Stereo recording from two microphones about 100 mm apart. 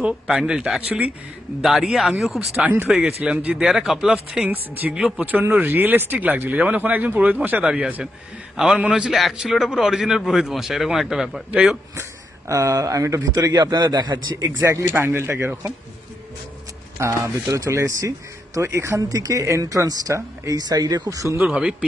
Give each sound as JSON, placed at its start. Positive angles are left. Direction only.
{"t": 0.0, "sound": "a man's voice", "side_deg": -10}
{"t": 2.6, "sound": "speech", "side_deg": -20}
{"t": 4.5, "sound": "a man's voice", "side_deg": -15}
{"t": 12.0, "sound": "speech", "side_deg": -30}
{"t": 14.6, "sound": "speech", "side_deg": -30}
{"t": 17.0, "sound": "speech", "side_deg": -30}
{"t": 21.4, "sound": "speech", "side_deg": -10}